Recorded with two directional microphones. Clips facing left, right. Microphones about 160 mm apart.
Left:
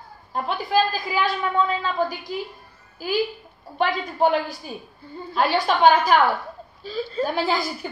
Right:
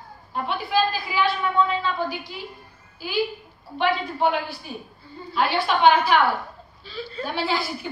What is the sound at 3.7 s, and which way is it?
A woman's voice, 40° left (ahead or behind).